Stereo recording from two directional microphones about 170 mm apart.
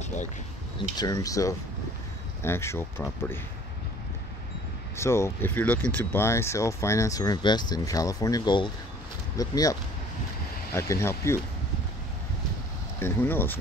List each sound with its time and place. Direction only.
0.0 s a sound: 45° left (ahead or behind)
0.7 s speech: 25° left (ahead or behind)
4.9 s speech: 15° left (ahead or behind)
13.0 s speech: 10° left (ahead or behind)